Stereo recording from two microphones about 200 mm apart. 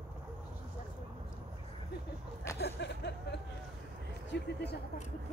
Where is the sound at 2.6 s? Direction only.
60° left (ahead or behind).